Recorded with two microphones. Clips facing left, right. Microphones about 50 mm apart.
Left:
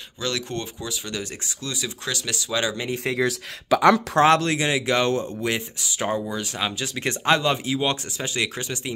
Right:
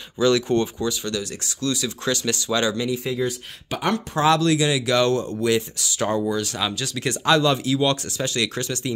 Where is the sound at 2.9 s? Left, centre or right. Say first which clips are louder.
Right 1 dB; left.